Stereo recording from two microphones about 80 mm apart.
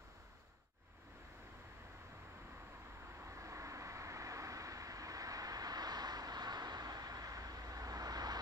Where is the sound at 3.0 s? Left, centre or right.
Right.